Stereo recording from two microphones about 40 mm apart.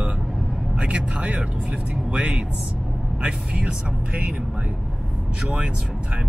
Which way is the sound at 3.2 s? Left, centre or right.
Right.